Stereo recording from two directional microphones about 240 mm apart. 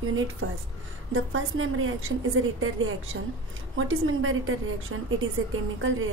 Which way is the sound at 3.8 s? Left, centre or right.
Right.